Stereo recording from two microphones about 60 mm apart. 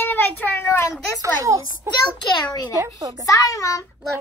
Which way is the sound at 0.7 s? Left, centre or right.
Left.